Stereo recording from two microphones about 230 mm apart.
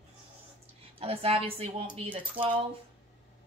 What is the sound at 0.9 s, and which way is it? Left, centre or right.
Speech, right.